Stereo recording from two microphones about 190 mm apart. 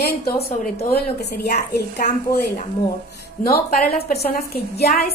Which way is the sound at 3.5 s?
55° left (ahead or behind).